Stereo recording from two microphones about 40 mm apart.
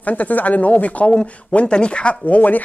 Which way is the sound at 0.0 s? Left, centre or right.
Left.